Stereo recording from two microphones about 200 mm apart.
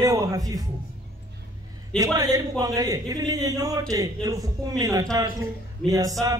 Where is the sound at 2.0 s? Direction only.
20° right (ahead or behind).